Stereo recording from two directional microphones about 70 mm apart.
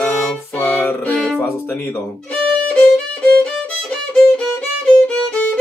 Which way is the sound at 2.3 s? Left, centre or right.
Centre.